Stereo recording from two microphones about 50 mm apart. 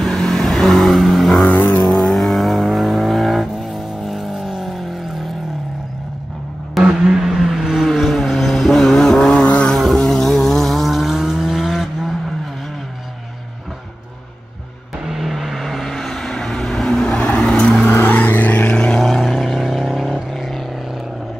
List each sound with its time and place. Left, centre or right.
0.0 s vehicle: centre
6.8 s vehicle: centre
9.4 s vehicle: left
9.7 s vehicle: centre
15.0 s vehicle: centre
17.8 s vehicle: left
18.7 s vehicle: centre
19.0 s vehicle: centre